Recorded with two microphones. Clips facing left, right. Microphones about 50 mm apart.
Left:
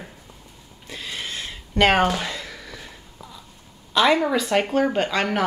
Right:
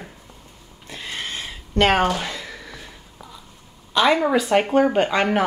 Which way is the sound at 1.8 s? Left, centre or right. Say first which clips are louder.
Even; centre.